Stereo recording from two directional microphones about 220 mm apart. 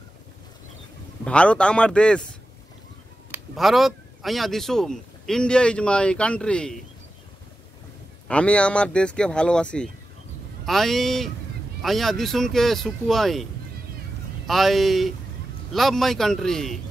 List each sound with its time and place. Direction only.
1.2 s speech: 5° left (ahead or behind)
8.3 s speech: 5° left (ahead or behind)
14.5 s speech: centre (ahead or behind)